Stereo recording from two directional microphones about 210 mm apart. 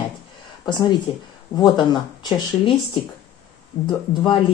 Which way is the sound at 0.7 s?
20° left (ahead or behind).